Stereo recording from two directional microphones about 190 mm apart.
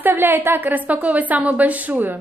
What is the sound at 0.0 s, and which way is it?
A woman's voice, 10° right (ahead or behind).